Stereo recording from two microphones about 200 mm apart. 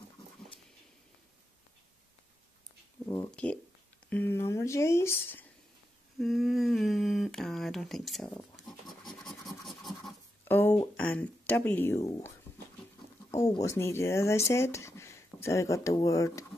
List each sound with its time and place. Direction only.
3.1 s a sound: 20° left (ahead or behind)
4.1 s speech: 10° left (ahead or behind)
6.1 s speech: centre (ahead or behind)
8.5 s scratch: centre (ahead or behind)
10.4 s speech: 10° left (ahead or behind)
13.4 s speech: 15° left (ahead or behind)